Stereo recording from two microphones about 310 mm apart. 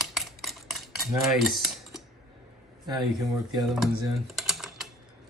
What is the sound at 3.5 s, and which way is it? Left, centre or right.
Speech, centre.